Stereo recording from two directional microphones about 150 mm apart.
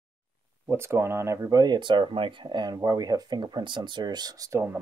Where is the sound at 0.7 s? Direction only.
15° right (ahead or behind).